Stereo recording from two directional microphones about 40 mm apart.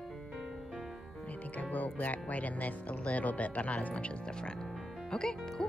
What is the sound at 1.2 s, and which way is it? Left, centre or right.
Music, left.